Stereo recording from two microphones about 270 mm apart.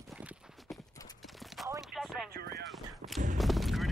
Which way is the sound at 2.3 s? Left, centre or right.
Right.